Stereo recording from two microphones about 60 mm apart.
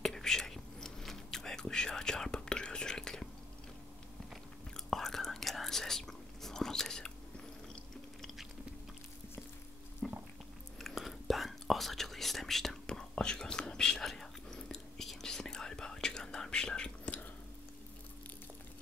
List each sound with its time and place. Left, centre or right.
0.0 s whispering: centre
4.3 s whispering: centre
10.0 s a sound: centre
10.8 s whispering: centre